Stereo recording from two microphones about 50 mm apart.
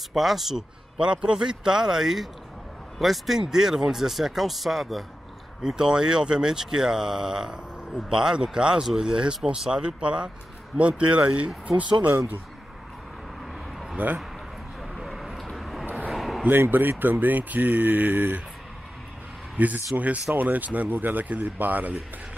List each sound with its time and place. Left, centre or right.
0.1 s speech: centre
0.9 s speech: centre
5.6 s speech: centre; by 12.2 s right
13.9 s speech: right
14.8 s vehicle: centre
16.1 s a sound: centre
16.4 s speech: right
19.5 s speech: right